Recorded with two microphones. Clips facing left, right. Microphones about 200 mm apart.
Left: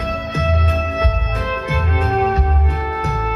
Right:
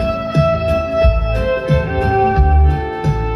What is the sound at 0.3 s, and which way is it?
Music, 35° right (ahead or behind).